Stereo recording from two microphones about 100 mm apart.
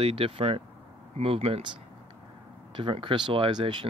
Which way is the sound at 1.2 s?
80° right.